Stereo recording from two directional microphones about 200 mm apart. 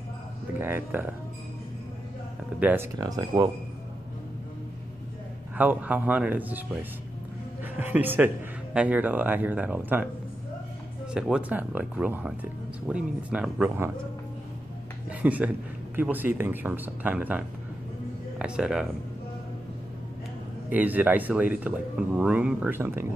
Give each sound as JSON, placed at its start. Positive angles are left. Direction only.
{"t": 0.6, "sound": "speech", "side_deg": -10}
{"t": 2.6, "sound": "speech", "side_deg": -10}
{"t": 5.6, "sound": "speech", "side_deg": -10}
{"t": 11.1, "sound": "speech", "side_deg": -5}
{"t": 15.0, "sound": "speech", "side_deg": -5}
{"t": 20.7, "sound": "speech", "side_deg": -10}